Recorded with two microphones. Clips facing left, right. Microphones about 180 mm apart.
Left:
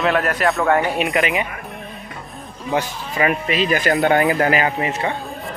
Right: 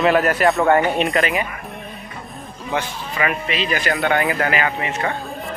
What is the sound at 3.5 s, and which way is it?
Speech, 45° left (ahead or behind).